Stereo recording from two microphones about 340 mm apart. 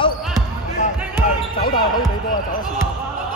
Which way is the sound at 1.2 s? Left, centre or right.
Left.